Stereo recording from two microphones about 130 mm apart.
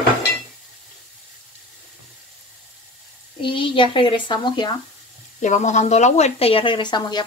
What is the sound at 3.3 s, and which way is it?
Speech, 40° left (ahead or behind).